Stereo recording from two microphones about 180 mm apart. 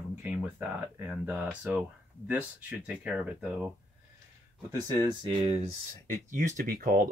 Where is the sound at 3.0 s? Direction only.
5° right (ahead or behind).